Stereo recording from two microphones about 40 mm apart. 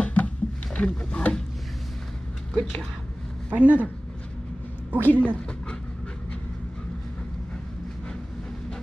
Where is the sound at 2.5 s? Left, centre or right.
Centre.